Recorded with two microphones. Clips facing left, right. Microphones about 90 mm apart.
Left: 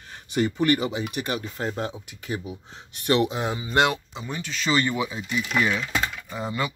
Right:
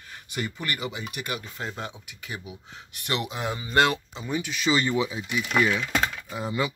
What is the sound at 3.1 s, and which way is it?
Speech, 25° left (ahead or behind).